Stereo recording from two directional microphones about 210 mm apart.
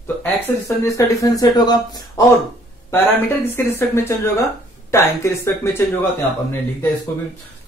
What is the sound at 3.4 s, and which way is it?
Speech, 10° left (ahead or behind).